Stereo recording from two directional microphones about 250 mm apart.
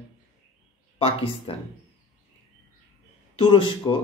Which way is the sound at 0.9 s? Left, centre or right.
Left.